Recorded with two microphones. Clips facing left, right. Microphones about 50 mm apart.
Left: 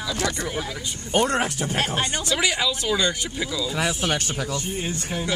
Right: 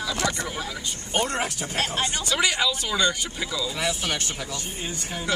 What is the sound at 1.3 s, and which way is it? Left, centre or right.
Speech, left.